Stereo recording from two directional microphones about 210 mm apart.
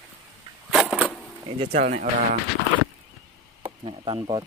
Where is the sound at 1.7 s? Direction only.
40° right (ahead or behind).